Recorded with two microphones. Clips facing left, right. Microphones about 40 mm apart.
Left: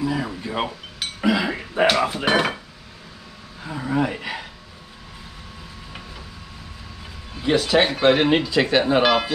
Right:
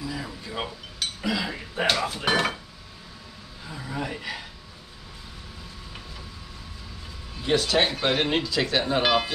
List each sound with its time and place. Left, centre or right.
0.0 s speech: left
0.9 s a sound: left
2.0 s speech: left
3.6 s speech: left
7.3 s speech: centre